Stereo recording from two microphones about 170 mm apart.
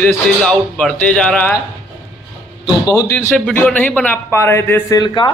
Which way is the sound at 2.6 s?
20° left (ahead or behind).